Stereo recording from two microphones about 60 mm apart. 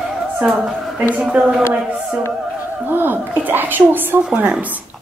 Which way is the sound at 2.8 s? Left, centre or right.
Right.